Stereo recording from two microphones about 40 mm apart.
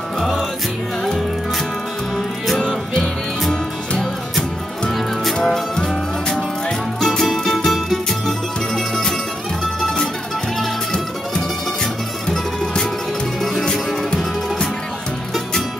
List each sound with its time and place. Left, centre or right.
0.2 s music: centre
2.1 s music: centre
4.0 s music: centre
7.0 s music: centre